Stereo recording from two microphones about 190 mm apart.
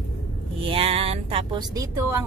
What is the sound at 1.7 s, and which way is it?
Speech, 15° right (ahead or behind).